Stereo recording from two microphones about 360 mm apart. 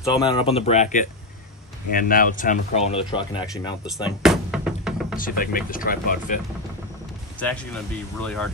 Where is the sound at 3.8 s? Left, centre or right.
Centre.